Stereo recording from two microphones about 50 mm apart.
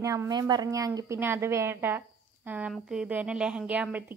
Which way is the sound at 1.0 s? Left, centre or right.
Right.